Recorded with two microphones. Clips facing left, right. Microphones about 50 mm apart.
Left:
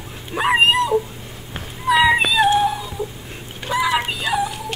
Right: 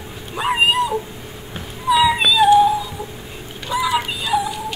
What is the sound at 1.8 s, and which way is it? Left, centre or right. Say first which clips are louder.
Cat: even; left.